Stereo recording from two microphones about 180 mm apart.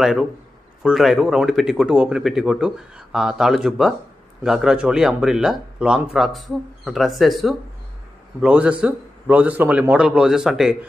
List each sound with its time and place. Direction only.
0.0 s a man's voice: 5° right (ahead or behind)